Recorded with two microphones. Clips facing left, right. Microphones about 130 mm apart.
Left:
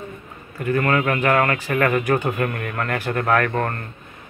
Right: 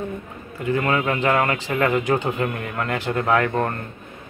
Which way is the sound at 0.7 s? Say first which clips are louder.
Left 1 dB; 15° right (ahead or behind).